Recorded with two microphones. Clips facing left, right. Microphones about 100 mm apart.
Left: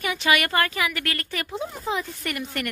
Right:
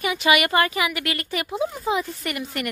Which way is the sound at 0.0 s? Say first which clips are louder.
Right 3 dB; 5° right (ahead or behind).